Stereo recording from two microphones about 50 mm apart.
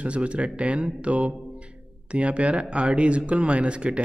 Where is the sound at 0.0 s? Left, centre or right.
Right.